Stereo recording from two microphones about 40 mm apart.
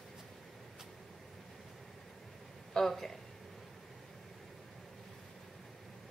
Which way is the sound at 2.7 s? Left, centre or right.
Centre.